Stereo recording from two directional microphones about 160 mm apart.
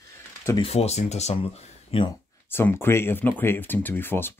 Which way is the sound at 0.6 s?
40° left (ahead or behind).